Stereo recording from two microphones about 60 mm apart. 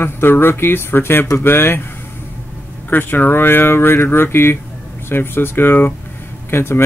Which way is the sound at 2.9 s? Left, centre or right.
Left.